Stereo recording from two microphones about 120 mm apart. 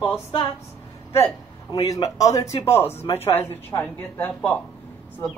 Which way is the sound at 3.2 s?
20° left (ahead or behind).